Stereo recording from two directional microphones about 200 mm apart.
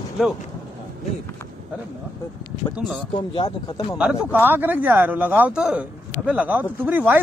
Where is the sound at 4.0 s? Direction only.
5° right (ahead or behind).